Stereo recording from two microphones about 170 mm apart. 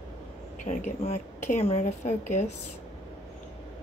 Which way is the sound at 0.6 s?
45° left (ahead or behind).